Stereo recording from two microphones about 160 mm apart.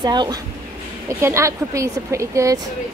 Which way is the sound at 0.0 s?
25° right (ahead or behind).